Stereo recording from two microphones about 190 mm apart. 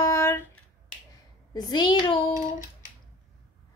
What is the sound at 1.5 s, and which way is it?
Speech, 20° left (ahead or behind).